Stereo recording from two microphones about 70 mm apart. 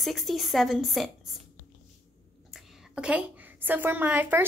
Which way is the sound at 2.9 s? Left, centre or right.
Centre.